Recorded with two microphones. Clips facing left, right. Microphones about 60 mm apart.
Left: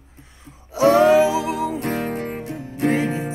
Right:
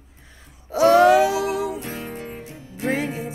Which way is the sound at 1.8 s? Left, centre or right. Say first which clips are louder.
Left 8 dB; left.